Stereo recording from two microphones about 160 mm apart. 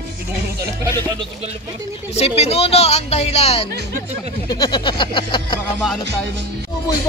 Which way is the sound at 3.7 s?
80° right.